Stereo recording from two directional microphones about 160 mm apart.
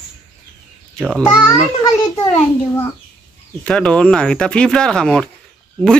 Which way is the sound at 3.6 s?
5° left (ahead or behind).